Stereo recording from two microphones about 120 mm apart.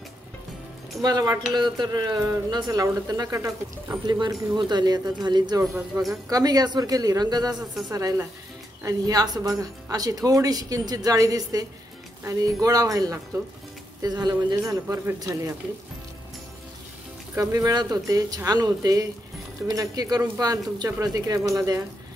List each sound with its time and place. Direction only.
1.0 s speech: 35° right (ahead or behind)
4.0 s speech: 40° right (ahead or behind)
17.4 s speech: 30° right (ahead or behind)